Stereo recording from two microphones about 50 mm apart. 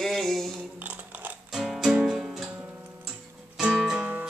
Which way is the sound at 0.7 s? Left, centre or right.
Right.